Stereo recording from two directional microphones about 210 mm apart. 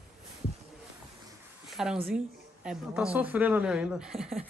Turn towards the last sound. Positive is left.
turn(degrees=0)  # may be behind; listen again after turning